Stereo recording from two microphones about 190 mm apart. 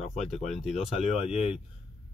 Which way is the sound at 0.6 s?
Centre (ahead or behind).